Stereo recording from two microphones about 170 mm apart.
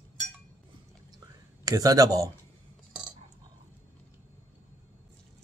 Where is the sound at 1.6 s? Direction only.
20° right (ahead or behind).